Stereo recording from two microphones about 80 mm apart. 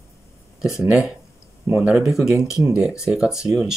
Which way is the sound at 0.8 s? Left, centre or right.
Centre.